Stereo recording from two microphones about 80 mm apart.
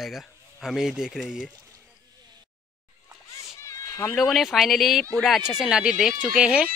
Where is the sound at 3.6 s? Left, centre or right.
Left.